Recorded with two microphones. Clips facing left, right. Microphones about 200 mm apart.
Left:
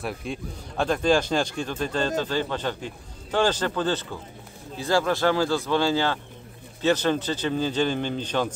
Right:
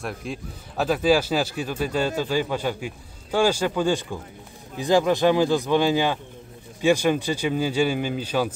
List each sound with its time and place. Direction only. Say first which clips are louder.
0.0 s speech: even; centre (ahead or behind)